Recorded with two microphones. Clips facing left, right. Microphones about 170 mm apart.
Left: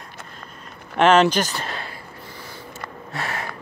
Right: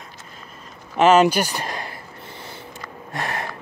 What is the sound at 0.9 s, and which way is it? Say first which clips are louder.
Speech: right 1 dB; 5° right (ahead or behind).